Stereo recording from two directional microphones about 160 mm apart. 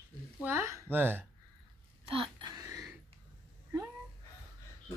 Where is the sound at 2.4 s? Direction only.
20° right (ahead or behind).